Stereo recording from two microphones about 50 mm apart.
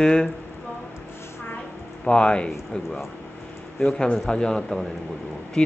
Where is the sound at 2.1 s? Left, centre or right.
Centre.